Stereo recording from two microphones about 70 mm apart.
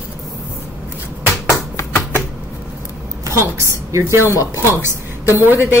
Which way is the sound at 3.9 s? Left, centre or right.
Right.